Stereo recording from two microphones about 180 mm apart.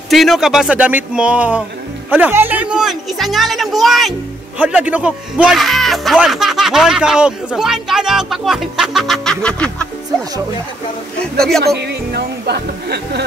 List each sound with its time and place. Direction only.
0.1 s speech: centre (ahead or behind)
11.3 s speech: centre (ahead or behind)
11.6 s a woman's voice: 65° right (ahead or behind)